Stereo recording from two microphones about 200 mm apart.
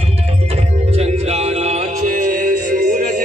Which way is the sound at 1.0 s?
30° right (ahead or behind).